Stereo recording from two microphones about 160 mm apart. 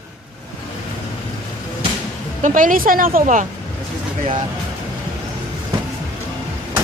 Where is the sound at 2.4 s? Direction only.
55° right (ahead or behind).